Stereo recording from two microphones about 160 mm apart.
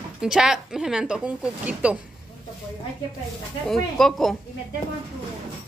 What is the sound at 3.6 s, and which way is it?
Speech, centre (ahead or behind).